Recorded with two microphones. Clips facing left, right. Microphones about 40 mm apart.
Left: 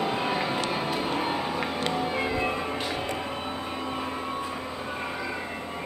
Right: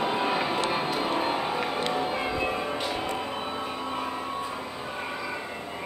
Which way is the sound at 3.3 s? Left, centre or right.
Centre.